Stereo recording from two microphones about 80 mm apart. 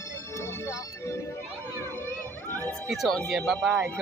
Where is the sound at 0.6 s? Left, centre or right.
Left.